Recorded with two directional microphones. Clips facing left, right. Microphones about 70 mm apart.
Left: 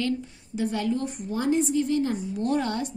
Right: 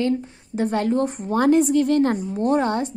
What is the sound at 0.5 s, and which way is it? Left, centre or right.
A woman's voice, right.